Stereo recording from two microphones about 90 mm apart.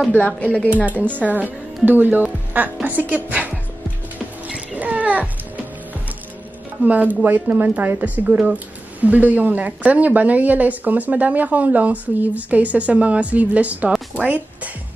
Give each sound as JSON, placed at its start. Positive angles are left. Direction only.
{"t": 0.4, "sound": "a woman's voice", "side_deg": 15}
{"t": 0.8, "sound": "speech", "side_deg": -20}
{"t": 4.5, "sound": "music", "side_deg": -15}
{"t": 6.8, "sound": "a woman's voice", "side_deg": -15}
{"t": 14.2, "sound": "music", "side_deg": -15}